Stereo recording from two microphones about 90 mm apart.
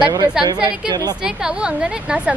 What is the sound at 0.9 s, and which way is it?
Speech, 45° right (ahead or behind).